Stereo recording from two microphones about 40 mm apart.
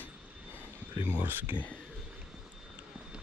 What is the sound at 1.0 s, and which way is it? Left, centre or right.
Speech, right.